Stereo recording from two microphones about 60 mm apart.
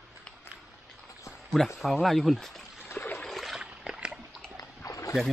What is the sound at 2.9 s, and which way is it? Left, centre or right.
Trickle, left.